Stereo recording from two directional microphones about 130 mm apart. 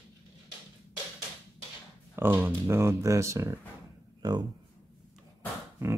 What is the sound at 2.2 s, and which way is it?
Speech, 15° right (ahead or behind).